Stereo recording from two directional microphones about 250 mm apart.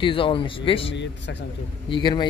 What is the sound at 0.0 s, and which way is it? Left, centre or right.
Speech, left.